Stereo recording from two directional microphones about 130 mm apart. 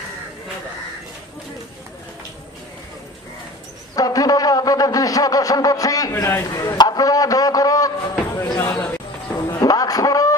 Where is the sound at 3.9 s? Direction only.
30° left (ahead or behind).